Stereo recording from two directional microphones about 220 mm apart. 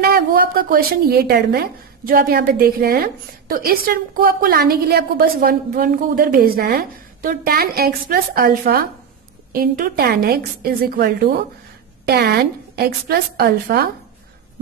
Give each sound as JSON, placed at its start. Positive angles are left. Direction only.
{"t": 0.0, "sound": "a woman's voice", "side_deg": -45}